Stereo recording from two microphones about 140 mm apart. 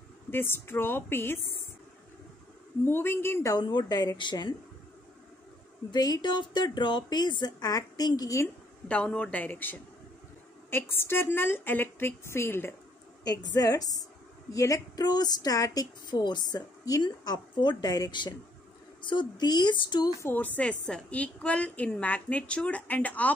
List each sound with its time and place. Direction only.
0.3 s a woman's voice: 15° left (ahead or behind)
2.8 s a woman's voice: 15° left (ahead or behind)
3.5 s speech: 30° left (ahead or behind)
5.9 s a woman's voice: 30° left (ahead or behind)
8.8 s a woman's voice: 10° left (ahead or behind)
13.2 s a woman's voice: 30° left (ahead or behind)
20.2 s a woman's voice: 10° left (ahead or behind)